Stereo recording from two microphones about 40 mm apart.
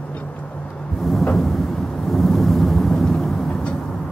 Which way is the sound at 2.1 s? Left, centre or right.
Centre.